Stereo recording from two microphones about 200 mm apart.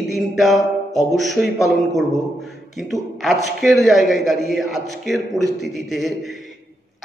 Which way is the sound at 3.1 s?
Centre (ahead or behind).